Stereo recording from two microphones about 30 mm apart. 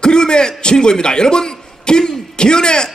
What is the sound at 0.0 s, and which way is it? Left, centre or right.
A man's voice, left.